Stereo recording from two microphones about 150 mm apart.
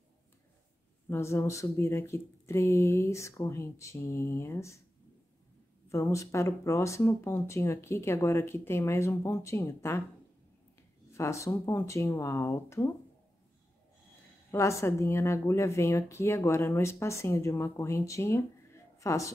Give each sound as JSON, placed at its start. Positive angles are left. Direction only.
{"t": 1.1, "sound": "speech", "side_deg": 20}
{"t": 5.9, "sound": "speech", "side_deg": 20}
{"t": 11.1, "sound": "speech", "side_deg": 20}
{"t": 14.5, "sound": "speech", "side_deg": 20}